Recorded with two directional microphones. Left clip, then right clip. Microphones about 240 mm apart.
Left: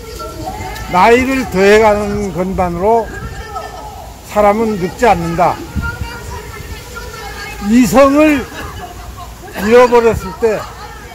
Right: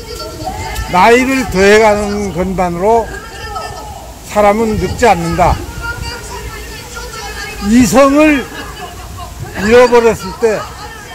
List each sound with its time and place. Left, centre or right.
0.9 s speech: centre
4.3 s speech: centre
7.7 s speech: centre
8.3 s speech: left
9.7 s speech: centre